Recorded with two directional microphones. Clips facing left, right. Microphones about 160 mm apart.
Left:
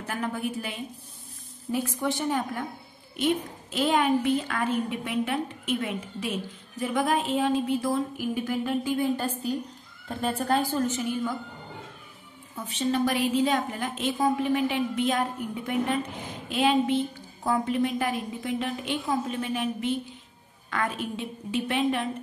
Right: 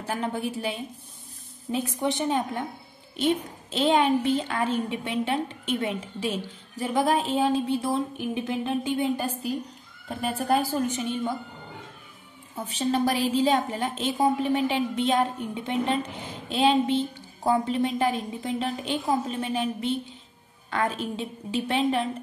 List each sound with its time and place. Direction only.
0.0 s a woman's voice: 30° right (ahead or behind)
1.7 s a woman's voice: 20° right (ahead or behind)
10.0 s a woman's voice: 10° right (ahead or behind)
12.5 s a woman's voice: 35° right (ahead or behind)